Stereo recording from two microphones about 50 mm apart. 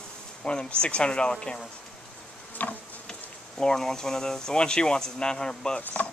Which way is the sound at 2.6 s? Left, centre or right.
Left.